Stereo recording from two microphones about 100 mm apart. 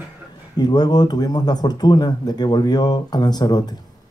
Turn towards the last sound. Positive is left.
turn(degrees=45)  # may be behind; listen again after turning